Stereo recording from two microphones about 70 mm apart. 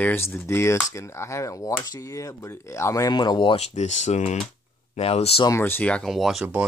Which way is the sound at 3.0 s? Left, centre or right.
Left.